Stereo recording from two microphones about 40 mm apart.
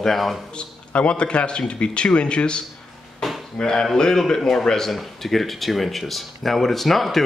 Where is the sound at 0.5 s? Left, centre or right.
Left.